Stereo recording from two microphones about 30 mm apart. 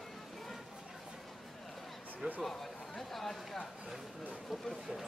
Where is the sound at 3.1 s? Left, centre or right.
Centre.